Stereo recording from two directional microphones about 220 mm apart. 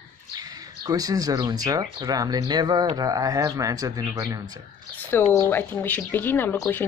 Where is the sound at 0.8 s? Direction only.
15° right (ahead or behind).